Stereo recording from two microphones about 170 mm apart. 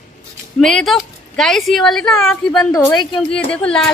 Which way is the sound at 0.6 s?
Centre (ahead or behind).